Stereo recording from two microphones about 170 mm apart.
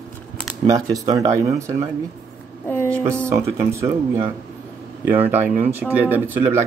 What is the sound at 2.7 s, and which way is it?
Speech, 10° left (ahead or behind).